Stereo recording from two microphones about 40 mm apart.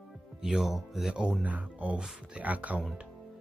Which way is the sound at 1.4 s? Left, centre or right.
Right.